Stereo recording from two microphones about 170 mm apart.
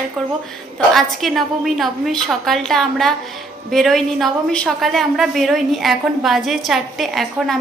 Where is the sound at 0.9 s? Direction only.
Centre (ahead or behind).